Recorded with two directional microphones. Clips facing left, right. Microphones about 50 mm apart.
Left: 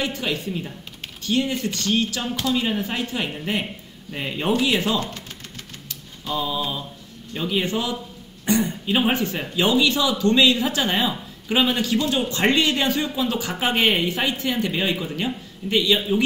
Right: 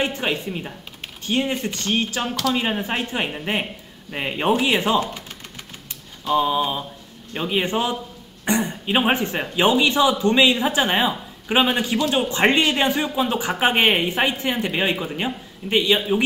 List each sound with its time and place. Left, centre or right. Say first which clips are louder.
0.0 s a woman's voice: right 2 dB; right
6.3 s a woman's voice: right 6 dB; right